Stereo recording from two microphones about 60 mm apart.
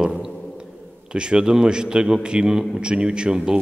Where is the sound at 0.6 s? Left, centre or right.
Centre.